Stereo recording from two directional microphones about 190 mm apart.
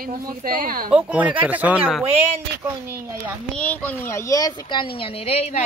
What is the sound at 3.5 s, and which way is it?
A child's voice, 10° left (ahead or behind).